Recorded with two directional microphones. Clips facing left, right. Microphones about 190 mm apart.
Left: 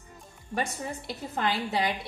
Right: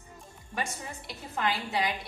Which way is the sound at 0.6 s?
35° left (ahead or behind).